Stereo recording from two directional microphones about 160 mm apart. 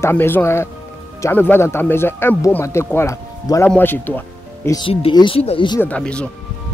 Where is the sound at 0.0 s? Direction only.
15° left (ahead or behind).